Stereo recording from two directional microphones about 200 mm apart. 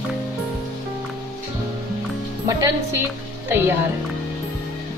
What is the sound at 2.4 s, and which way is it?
Music, 15° right (ahead or behind).